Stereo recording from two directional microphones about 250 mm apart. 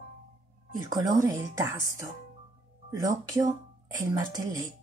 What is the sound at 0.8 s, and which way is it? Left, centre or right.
Speech, centre.